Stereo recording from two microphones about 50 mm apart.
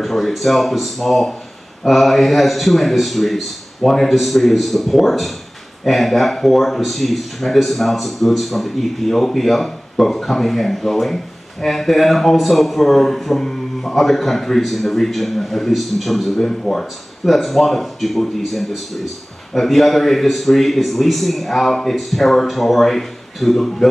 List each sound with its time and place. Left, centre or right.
0.0 s speech: centre